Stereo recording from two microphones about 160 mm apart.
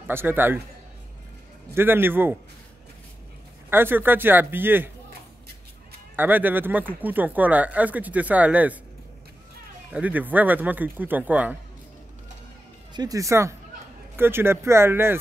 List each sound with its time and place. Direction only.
0.0 s speech: 15° right (ahead or behind)
1.7 s speech: 15° right (ahead or behind)
3.7 s speech: 15° right (ahead or behind)
6.1 s speech: 10° right (ahead or behind)
9.9 s speech: 10° right (ahead or behind)
12.9 s speech: 25° right (ahead or behind)